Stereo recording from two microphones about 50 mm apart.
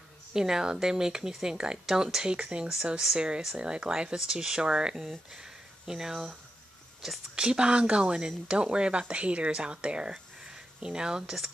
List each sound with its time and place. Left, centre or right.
0.3 s speech: centre
7.3 s speech: centre